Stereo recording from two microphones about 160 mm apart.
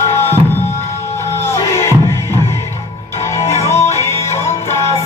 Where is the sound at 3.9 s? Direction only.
15° left (ahead or behind).